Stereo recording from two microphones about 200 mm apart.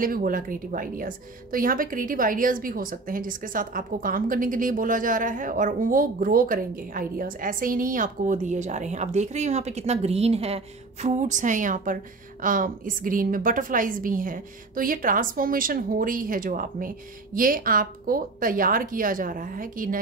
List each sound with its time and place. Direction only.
0.0 s a woman's voice: 45° right (ahead or behind)